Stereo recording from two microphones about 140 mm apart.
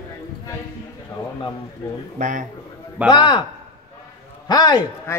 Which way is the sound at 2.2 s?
65° right (ahead or behind).